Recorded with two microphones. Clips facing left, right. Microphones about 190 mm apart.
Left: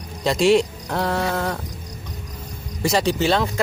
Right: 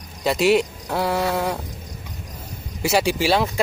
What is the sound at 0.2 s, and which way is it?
Speech, 5° right (ahead or behind).